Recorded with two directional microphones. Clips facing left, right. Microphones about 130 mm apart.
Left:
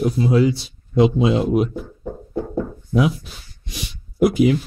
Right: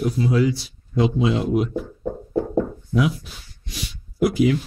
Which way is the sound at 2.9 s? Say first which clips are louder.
Left 3 dB; 25° left (ahead or behind).